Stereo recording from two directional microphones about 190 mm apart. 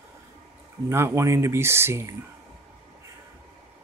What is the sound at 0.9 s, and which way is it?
A man's voice, 15° right (ahead or behind).